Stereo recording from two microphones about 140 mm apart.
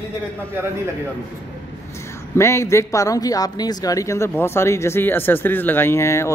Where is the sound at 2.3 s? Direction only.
20° left (ahead or behind).